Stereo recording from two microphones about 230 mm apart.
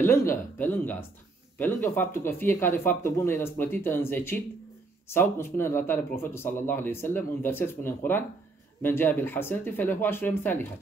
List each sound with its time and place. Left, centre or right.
0.0 s speech: centre